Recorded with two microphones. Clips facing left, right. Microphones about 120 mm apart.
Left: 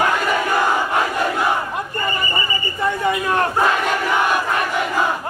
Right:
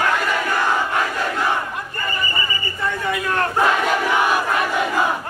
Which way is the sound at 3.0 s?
20° left (ahead or behind).